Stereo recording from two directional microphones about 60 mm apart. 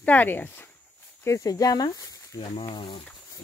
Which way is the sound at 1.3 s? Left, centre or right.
Left.